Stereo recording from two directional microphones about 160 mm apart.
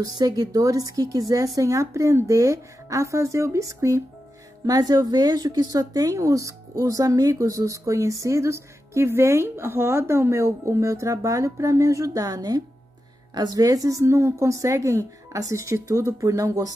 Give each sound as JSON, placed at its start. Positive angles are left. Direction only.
{"t": 0.0, "sound": "speech", "side_deg": -25}